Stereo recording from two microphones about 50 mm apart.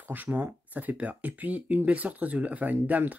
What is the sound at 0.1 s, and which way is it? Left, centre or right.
Speech, right.